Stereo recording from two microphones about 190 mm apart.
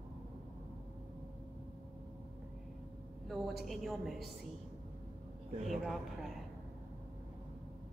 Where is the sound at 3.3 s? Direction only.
Centre (ahead or behind).